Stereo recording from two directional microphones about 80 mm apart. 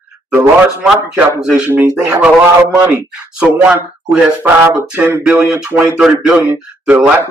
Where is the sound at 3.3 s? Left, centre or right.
Centre.